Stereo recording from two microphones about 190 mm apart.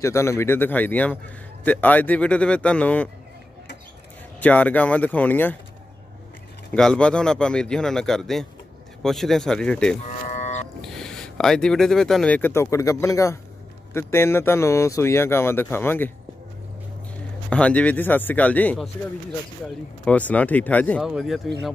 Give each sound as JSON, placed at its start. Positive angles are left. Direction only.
{"t": 0.0, "sound": "a man's voice", "side_deg": 15}
{"t": 4.4, "sound": "a man's voice", "side_deg": 10}
{"t": 6.7, "sound": "speech", "side_deg": 5}
{"t": 10.2, "sound": "livestock", "side_deg": 35}
{"t": 10.8, "sound": "a man's voice", "side_deg": 5}
{"t": 17.5, "sound": "a man's voice", "side_deg": 5}
{"t": 20.1, "sound": "a man's voice", "side_deg": 5}